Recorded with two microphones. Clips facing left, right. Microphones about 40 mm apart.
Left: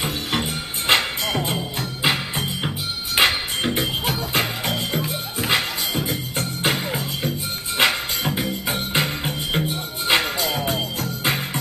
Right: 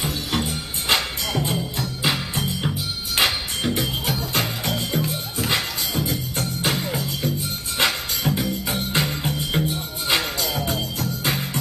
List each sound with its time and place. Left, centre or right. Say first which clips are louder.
0.0 s music: left 1 dB; left